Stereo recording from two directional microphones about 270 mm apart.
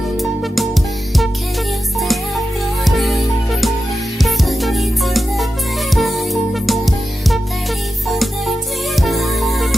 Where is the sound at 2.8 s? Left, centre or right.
Centre.